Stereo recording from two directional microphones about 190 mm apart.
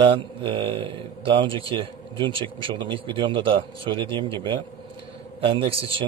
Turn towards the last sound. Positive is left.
turn(degrees=-30)  # may be behind; listen again after turning